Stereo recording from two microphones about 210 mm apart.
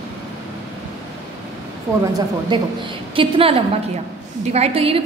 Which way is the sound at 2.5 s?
20° right (ahead or behind).